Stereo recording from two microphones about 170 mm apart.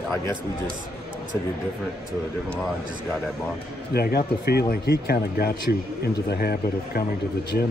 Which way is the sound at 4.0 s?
65° left (ahead or behind).